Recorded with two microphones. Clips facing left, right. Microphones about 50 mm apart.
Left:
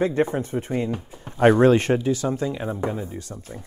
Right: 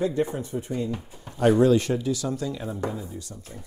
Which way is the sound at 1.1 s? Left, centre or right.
Left.